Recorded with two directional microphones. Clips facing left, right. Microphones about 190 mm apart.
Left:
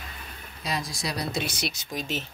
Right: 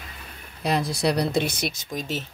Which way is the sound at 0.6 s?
60° right (ahead or behind).